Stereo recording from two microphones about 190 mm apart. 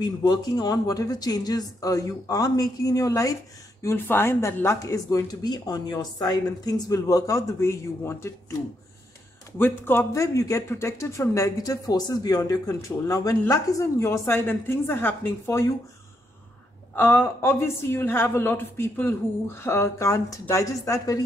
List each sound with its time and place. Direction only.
0.0 s a man's voice: 20° left (ahead or behind)
9.6 s a man's voice: 10° left (ahead or behind)
16.9 s a man's voice: 10° left (ahead or behind)